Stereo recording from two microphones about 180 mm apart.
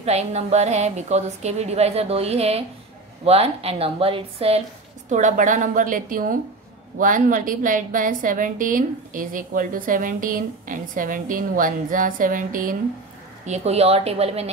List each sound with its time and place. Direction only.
0.0 s a woman's voice: 35° right (ahead or behind)
5.1 s a woman's voice: 45° right (ahead or behind)
13.5 s a woman's voice: 35° right (ahead or behind)